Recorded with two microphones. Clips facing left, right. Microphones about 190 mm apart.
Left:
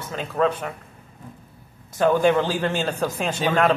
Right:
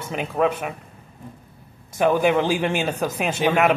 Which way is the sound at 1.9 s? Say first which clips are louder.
Even; 10° right (ahead or behind).